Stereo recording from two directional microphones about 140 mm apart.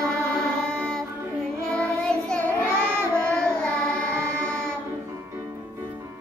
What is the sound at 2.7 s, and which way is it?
Child singing, 15° right (ahead or behind).